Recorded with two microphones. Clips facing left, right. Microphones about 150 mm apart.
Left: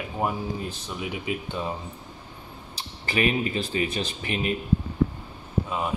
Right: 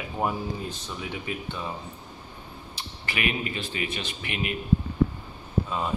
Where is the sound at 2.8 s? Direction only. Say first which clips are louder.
Left 6 dB; 35° left (ahead or behind).